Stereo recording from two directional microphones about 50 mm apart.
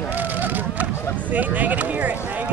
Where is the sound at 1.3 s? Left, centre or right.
Right.